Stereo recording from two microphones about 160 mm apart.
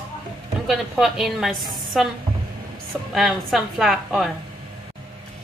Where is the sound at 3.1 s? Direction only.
Centre (ahead or behind).